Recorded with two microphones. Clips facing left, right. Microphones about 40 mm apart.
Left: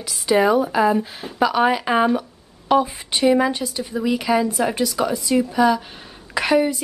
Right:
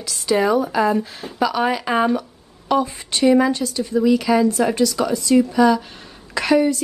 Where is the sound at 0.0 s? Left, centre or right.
Centre.